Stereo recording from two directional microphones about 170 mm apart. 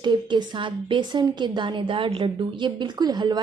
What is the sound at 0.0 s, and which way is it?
A woman's voice, 25° right (ahead or behind).